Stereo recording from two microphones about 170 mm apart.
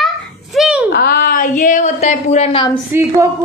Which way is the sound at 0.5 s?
5° right (ahead or behind).